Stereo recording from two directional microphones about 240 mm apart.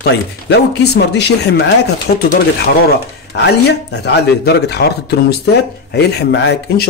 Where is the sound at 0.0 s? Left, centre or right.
Left.